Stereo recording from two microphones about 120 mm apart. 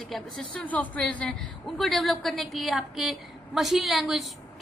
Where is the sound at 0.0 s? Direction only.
5° left (ahead or behind).